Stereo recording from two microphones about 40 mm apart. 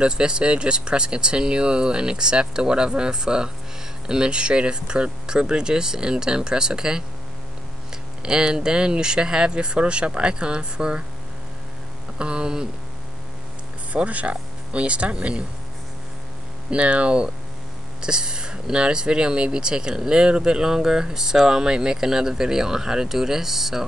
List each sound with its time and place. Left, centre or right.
0.0 s speech: right
8.2 s speech: centre
12.2 s speech: right
13.9 s speech: right
16.7 s speech: right; by 23.9 s centre